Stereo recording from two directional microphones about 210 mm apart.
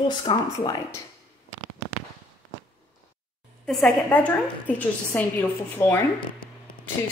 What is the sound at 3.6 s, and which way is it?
A woman's voice, centre (ahead or behind).